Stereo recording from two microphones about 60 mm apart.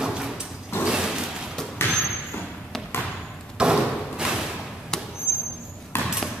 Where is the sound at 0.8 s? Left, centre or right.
Centre.